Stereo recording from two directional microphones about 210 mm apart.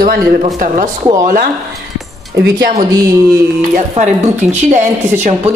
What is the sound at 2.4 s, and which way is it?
Speech, 45° right (ahead or behind).